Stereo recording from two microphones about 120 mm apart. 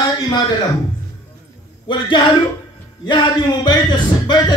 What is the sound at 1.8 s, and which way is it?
Speech, 40° left (ahead or behind).